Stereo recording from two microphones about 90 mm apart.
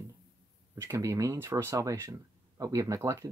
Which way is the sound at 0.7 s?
35° right (ahead or behind).